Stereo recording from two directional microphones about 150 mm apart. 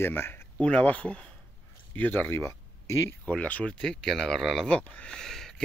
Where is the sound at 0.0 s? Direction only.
15° left (ahead or behind).